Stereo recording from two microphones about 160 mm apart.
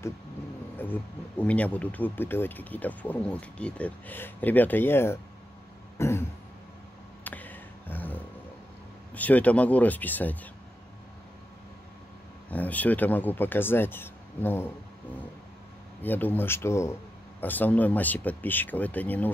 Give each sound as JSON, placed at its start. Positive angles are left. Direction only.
{"t": 0.7, "sound": "speech", "side_deg": 10}
{"t": 5.9, "sound": "throat clearing", "side_deg": 15}
{"t": 7.2, "sound": "a sound", "side_deg": 10}
{"t": 9.1, "sound": "speech", "side_deg": 10}
{"t": 12.4, "sound": "speech", "side_deg": 10}
{"t": 16.0, "sound": "speech", "side_deg": 10}